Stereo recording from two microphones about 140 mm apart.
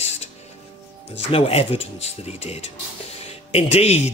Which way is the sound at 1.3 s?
45° left (ahead or behind).